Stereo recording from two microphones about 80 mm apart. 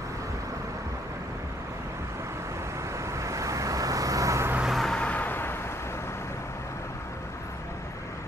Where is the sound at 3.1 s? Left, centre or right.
Right.